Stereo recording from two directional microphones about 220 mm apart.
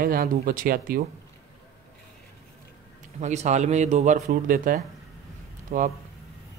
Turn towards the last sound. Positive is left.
turn(degrees=-35)  # may be behind; listen again after turning